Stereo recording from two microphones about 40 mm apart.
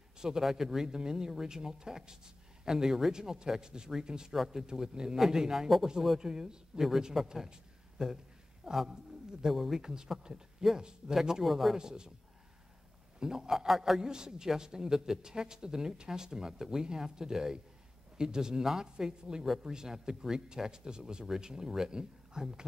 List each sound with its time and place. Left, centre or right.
0.2 s a man's voice: centre
9.5 s a man's voice: centre
9.8 s a man's voice: centre
11.4 s speech: centre
11.7 s speech: centre
13.2 s speech: centre
13.5 s a man's voice: centre